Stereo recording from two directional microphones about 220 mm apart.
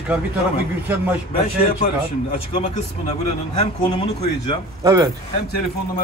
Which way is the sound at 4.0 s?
25° left (ahead or behind).